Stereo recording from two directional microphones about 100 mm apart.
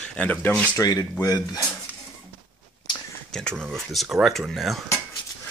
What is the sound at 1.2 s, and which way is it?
Speech, 35° left (ahead or behind).